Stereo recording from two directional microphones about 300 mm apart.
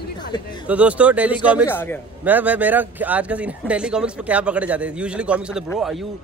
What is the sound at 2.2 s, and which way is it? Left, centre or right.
Speech, centre.